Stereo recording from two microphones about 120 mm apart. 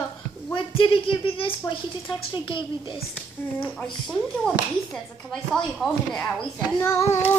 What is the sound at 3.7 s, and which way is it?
Speech, 5° left (ahead or behind).